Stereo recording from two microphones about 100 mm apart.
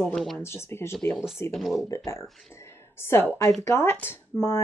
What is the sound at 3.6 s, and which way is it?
Speech, 30° left (ahead or behind).